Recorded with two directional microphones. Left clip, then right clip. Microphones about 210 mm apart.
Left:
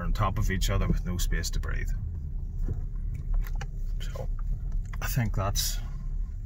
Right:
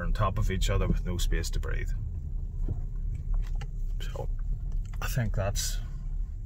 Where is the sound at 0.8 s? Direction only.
Centre (ahead or behind).